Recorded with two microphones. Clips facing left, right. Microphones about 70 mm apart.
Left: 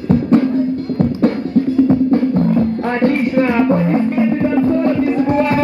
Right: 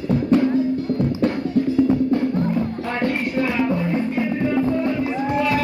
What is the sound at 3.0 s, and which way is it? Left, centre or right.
Music, left.